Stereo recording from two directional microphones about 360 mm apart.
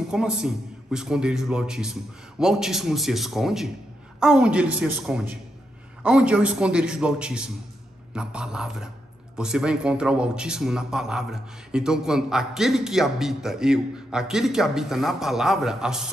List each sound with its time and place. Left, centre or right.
0.1 s a man's voice: centre